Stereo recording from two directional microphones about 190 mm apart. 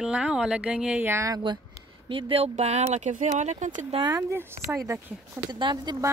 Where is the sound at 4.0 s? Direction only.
15° right (ahead or behind).